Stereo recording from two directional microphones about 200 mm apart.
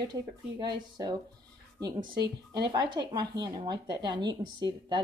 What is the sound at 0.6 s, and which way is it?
Speech, 20° right (ahead or behind).